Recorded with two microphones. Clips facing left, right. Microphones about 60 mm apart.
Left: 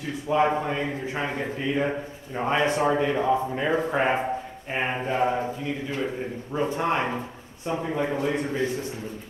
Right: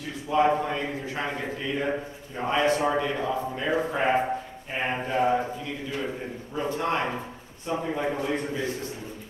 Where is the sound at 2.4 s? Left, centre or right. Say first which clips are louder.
Left 1 dB; left.